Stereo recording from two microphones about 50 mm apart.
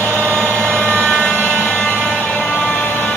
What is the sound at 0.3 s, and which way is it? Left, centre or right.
Vehicle, left.